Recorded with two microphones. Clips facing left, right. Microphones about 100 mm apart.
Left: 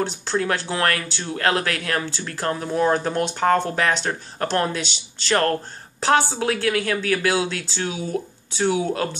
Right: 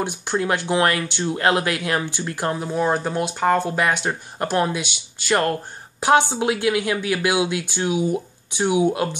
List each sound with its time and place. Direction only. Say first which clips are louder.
0.0 s speech: even; 15° right (ahead or behind)